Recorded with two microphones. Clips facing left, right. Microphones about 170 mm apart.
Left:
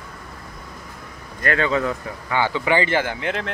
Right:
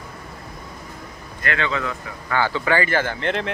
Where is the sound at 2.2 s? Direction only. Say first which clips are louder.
Even; 15° left (ahead or behind).